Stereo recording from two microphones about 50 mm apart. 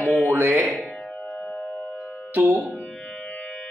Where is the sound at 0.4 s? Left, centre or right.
Right.